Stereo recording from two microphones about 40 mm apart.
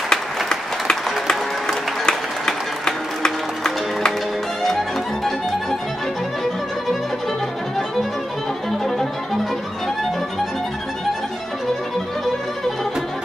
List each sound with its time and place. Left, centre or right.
0.1 s applause: centre
4.6 s music: centre